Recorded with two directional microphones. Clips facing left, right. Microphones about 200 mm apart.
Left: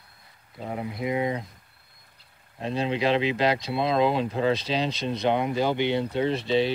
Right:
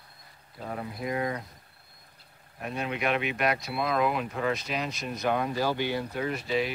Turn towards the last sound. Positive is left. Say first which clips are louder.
# left 5 dB
turn(degrees=30)  # may be behind; listen again after turning